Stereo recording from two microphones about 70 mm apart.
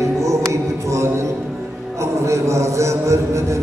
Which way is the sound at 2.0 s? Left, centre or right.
Right.